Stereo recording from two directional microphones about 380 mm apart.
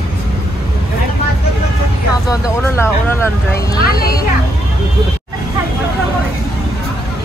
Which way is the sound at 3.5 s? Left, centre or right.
Left.